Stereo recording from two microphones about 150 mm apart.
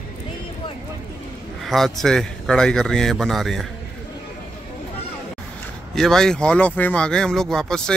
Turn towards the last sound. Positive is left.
turn(degrees=5)  # may be behind; listen again after turning